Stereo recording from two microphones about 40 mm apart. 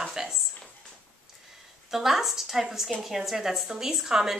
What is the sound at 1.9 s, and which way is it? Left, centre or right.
Speech, centre.